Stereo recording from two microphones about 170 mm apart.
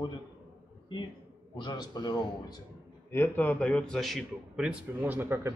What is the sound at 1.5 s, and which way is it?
A man's voice, 25° left (ahead or behind).